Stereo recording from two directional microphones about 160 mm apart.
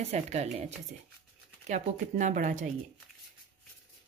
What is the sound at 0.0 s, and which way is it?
Speech, 45° right (ahead or behind).